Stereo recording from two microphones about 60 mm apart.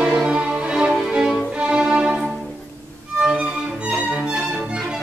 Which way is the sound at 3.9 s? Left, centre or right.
Centre.